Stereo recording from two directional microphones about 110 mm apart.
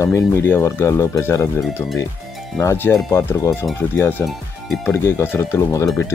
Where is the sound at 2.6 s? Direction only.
25° left (ahead or behind).